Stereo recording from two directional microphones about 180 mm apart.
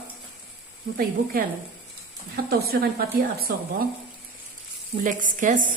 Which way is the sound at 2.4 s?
60° right (ahead or behind).